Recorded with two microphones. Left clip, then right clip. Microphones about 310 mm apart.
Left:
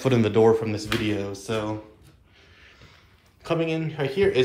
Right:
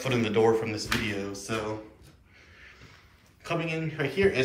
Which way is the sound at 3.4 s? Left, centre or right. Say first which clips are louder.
Left 5 dB; centre.